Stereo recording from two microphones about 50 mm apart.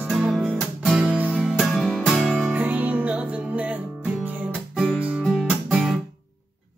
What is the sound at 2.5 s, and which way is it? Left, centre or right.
Music, right.